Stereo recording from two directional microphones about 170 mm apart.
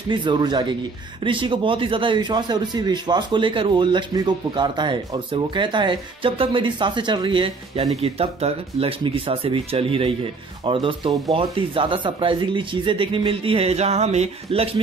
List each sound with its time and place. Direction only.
0.1 s speech: 30° right (ahead or behind)